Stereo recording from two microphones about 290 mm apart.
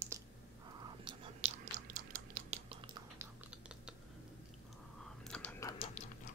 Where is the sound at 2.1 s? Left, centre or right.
Right.